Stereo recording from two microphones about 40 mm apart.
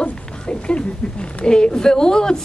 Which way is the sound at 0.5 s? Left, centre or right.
Left.